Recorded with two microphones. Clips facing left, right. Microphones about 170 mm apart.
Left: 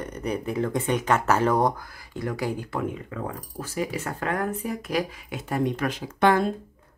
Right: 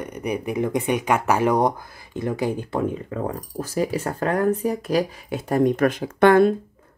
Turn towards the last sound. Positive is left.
turn(degrees=-60)  # may be behind; listen again after turning